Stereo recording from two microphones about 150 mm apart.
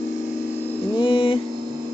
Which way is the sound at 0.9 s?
35° left (ahead or behind).